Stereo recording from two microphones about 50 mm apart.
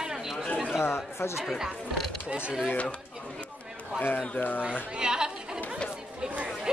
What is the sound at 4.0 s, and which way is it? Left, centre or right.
Speech, left.